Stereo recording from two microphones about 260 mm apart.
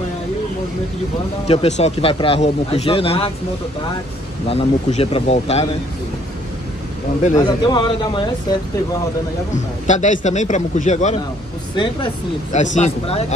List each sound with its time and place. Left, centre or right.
1.5 s a man's voice: left
4.5 s a man's voice: left
7.3 s speech: centre
9.8 s a man's voice: left